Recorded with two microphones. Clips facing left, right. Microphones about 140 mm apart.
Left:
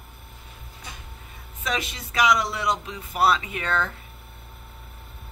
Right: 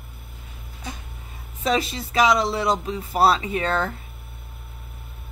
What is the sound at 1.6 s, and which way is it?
A man's voice, 30° right (ahead or behind).